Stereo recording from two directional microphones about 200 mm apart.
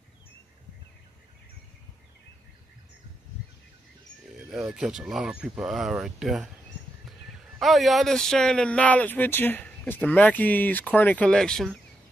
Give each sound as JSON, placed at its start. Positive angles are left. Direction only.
{"t": 4.3, "sound": "speech", "side_deg": -5}
{"t": 7.6, "sound": "speech", "side_deg": 0}